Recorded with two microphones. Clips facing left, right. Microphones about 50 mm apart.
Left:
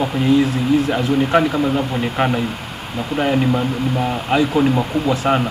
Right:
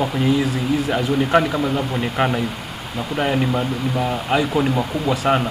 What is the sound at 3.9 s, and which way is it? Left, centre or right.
Speech, left.